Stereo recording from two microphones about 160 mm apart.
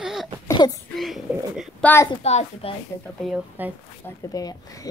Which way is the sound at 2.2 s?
40° left (ahead or behind).